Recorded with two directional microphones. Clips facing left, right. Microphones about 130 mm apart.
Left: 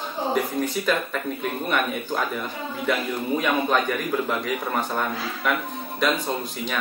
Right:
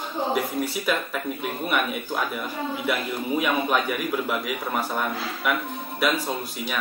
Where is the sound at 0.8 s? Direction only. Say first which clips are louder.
Left 1 dB; 10° right (ahead or behind).